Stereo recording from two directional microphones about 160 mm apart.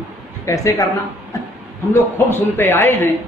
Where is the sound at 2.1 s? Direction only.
15° left (ahead or behind).